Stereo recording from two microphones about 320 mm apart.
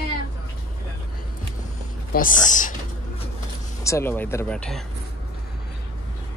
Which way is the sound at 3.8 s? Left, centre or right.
Centre.